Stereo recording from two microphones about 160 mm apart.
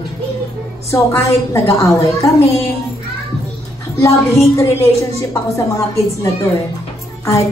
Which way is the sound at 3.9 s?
20° left (ahead or behind).